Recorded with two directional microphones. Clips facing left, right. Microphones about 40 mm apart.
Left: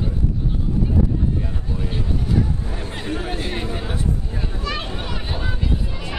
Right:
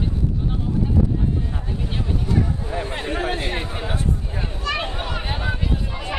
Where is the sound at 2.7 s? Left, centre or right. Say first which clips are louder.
Right 2 dB; right.